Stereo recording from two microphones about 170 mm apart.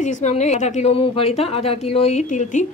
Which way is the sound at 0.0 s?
45° left (ahead or behind).